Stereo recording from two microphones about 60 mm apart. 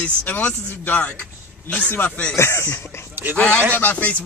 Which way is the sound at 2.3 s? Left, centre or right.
Left.